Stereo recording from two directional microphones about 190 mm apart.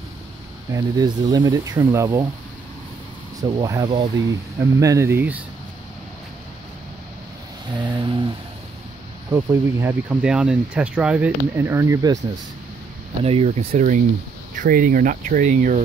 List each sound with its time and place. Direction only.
0.7 s speech: 20° right (ahead or behind)
3.6 s speech: 20° right (ahead or behind)
7.8 s speech: 25° right (ahead or behind)
9.3 s speech: 15° right (ahead or behind)
13.2 s speech: 30° right (ahead or behind)